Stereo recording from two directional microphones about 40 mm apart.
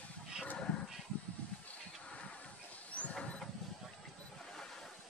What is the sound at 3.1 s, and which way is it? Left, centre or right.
Vehicle, left.